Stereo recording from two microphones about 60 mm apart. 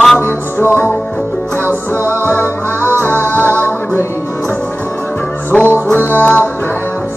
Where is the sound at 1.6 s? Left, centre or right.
Right.